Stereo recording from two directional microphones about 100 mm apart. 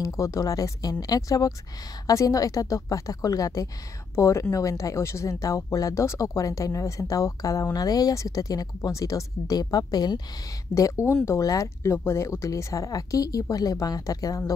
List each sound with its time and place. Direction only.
0.0 s speech: 35° left (ahead or behind)
10.7 s speech: 30° left (ahead or behind)